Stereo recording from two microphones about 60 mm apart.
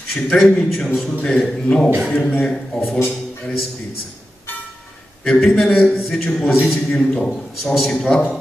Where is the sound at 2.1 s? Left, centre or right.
Left.